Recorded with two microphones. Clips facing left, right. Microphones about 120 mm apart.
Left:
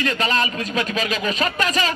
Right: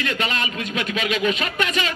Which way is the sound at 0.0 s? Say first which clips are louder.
Left 4 dB; 35° left (ahead or behind).